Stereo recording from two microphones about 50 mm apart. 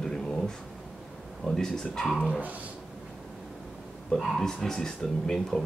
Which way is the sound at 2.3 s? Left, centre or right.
Right.